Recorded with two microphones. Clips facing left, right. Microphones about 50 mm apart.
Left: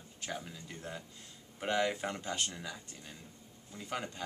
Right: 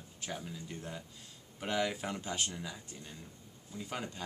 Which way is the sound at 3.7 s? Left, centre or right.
Centre.